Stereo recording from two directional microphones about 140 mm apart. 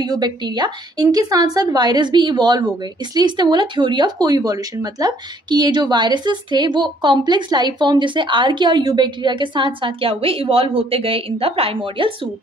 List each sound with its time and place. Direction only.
0.0 s speech: 30° right (ahead or behind)